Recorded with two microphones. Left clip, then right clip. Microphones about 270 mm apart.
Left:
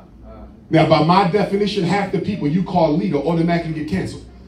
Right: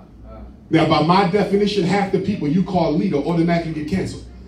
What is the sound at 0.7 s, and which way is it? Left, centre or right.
A man's voice, left.